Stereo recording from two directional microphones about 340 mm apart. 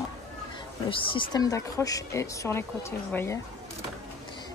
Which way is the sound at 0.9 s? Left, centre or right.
Centre.